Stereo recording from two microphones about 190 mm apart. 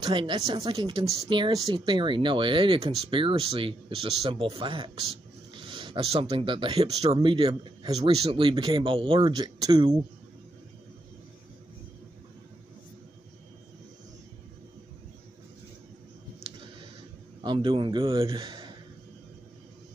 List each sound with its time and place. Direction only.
0.0 s speech: 25° right (ahead or behind)
17.4 s a man's voice: 25° right (ahead or behind)